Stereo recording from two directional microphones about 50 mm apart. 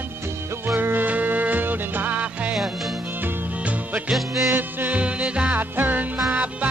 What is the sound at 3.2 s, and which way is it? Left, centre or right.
Music, right.